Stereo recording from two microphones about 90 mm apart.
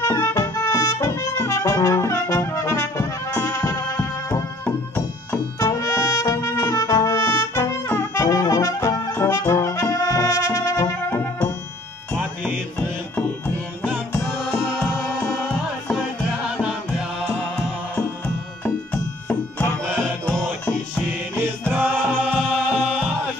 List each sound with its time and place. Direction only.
0.0 s trumpet: 30° left (ahead or behind)
4.6 s music: 20° left (ahead or behind)
5.6 s trumpet: 35° left (ahead or behind)
9.5 s brass instrument: 35° left (ahead or behind)
12.2 s music: 20° right (ahead or behind)
14.3 s music: centre (ahead or behind)
16.4 s music: 10° right (ahead or behind)
21.4 s music: 20° right (ahead or behind)
22.4 s music: centre (ahead or behind)
22.9 s music: 15° right (ahead or behind)